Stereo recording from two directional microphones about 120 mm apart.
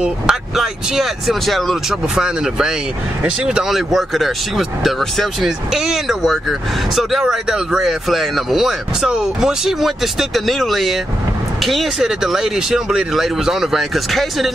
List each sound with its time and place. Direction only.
0.0 s speech: 5° right (ahead or behind)